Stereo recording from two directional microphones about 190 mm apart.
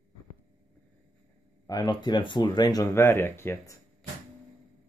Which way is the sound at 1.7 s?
20° left (ahead or behind).